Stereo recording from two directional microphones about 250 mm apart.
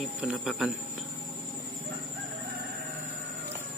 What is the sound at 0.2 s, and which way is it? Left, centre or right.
Speech, centre.